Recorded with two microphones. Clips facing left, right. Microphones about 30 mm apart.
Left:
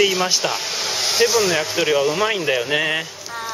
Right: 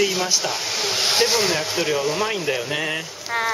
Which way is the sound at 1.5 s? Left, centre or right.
Centre.